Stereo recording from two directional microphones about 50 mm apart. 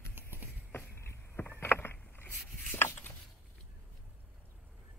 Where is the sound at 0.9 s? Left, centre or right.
Left.